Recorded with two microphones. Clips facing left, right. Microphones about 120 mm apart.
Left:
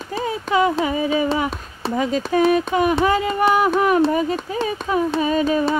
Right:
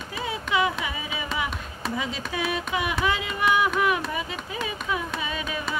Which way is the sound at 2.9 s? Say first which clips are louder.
Left 8 dB; 40° left (ahead or behind).